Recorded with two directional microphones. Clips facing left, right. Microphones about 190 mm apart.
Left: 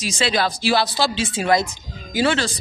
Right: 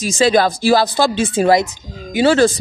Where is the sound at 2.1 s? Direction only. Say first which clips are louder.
Right 6 dB; 25° right (ahead or behind).